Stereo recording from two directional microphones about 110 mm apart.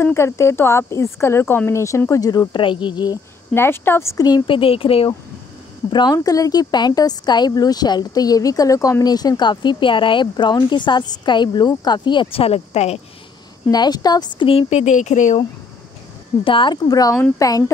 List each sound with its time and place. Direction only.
0.0 s speech: 25° left (ahead or behind)
2.5 s speech: 50° left (ahead or behind)
3.5 s speech: 20° left (ahead or behind)
4.5 s speech: 55° left (ahead or behind)
5.9 s speech: 45° left (ahead or behind)
6.1 s a woman's voice: 30° left (ahead or behind); by 13.0 s 75° left (ahead or behind)
13.7 s a woman's voice: 40° left (ahead or behind)
14.5 s speech: 70° left (ahead or behind); by 15.4 s 90° left
16.4 s speech: 50° left (ahead or behind)
16.9 s a woman's voice: 35° left (ahead or behind)